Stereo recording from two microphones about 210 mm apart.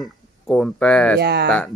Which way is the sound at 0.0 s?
Centre (ahead or behind).